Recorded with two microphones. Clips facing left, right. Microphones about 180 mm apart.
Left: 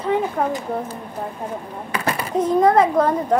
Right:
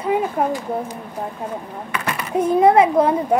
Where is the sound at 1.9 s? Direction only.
35° left (ahead or behind).